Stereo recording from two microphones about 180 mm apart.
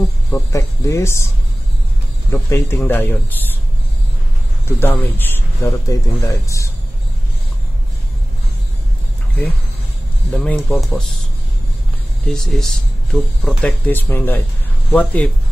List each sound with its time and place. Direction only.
0.3 s speech: 15° left (ahead or behind)
2.3 s speech: 15° left (ahead or behind)
4.6 s speech: 10° left (ahead or behind)
10.3 s speech: 5° left (ahead or behind)
12.3 s speech: centre (ahead or behind)